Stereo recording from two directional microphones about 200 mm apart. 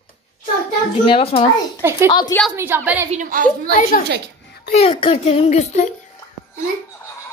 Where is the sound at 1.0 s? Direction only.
30° left (ahead or behind).